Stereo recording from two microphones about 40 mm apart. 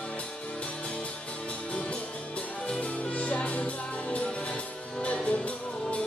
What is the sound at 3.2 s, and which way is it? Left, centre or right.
Music, left.